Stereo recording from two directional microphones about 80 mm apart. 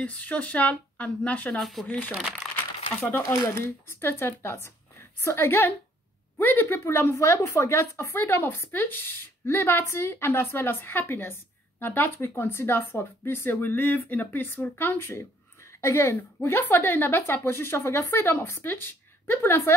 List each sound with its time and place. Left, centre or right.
0.0 s speech: centre
1.6 s speech: centre
1.9 s a woman's voice: left
2.4 s crumpling: centre
3.1 s a woman's voice: left